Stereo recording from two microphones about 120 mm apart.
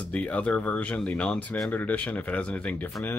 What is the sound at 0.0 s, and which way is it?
Speech, 10° left (ahead or behind).